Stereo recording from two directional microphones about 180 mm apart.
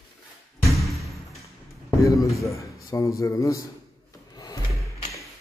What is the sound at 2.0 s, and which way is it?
A man's voice, 15° left (ahead or behind).